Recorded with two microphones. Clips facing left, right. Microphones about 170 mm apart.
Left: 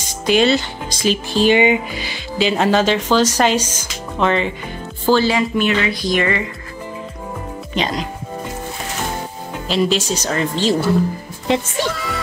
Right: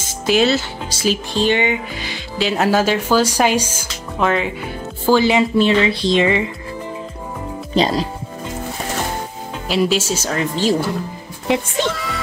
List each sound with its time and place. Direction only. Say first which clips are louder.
0.0 s speech: left 1 dB; 5° right (ahead or behind)
1.3 s music: left 6 dB; 10° left (ahead or behind)
2.3 s speech: left 1 dB; centre (ahead or behind)
5.0 s speech: right 1 dB; 15° right (ahead or behind)
5.6 s speech: right 3 dB; 30° right (ahead or behind)
7.7 s speech: right 5 dB; 35° right (ahead or behind)
9.7 s speech: even; 5° right (ahead or behind)
11.8 s music: right 1 dB; centre (ahead or behind)